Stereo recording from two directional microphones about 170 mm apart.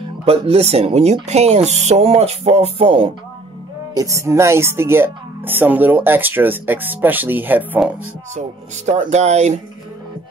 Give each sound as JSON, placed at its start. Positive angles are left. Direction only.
{"t": 0.2, "sound": "speech", "side_deg": -35}
{"t": 3.9, "sound": "speech", "side_deg": -20}
{"t": 8.4, "sound": "speech", "side_deg": -45}